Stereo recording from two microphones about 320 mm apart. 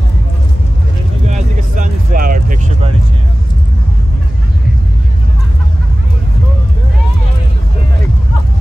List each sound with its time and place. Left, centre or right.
1.2 s vehicle: right